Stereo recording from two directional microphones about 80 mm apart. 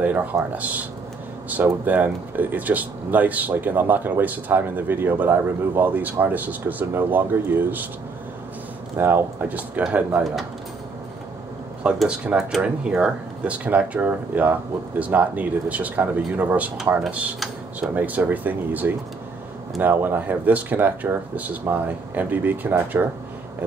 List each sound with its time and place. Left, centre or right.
0.0 s speech: right
8.9 s speech: right
11.8 s speech: centre
17.7 s speech: centre